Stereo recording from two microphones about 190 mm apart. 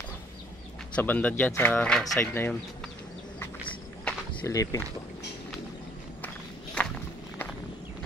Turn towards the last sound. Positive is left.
turn(degrees=5)  # may be behind; listen again after turning